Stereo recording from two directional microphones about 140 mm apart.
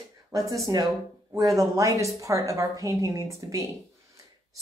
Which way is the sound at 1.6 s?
20° right (ahead or behind).